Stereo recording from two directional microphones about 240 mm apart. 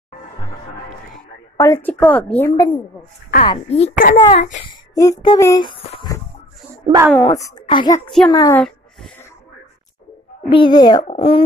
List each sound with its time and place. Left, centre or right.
1.6 s speech: centre
3.4 s a child's voice: left
4.9 s speech: centre
6.9 s a woman's voice: centre
7.2 s speech: centre
10.5 s a child's voice: centre